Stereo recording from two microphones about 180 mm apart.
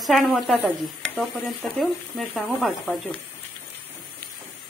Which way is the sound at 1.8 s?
Centre (ahead or behind).